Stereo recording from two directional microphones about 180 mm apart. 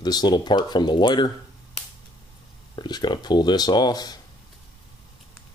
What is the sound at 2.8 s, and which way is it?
Speech, 25° left (ahead or behind).